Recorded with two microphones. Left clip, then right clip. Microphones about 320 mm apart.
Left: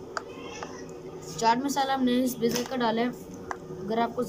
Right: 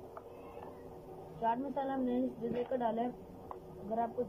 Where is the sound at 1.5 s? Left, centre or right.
Centre.